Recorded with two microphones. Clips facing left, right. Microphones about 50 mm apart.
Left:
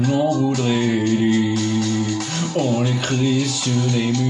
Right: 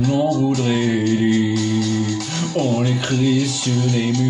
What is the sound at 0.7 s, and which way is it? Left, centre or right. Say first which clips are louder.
Music: even; centre.